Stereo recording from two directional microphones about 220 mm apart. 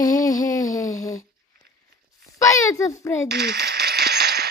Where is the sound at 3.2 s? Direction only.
50° right (ahead or behind).